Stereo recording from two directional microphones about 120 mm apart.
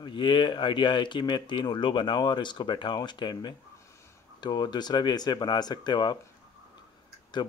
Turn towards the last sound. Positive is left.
turn(degrees=35)  # may be behind; listen again after turning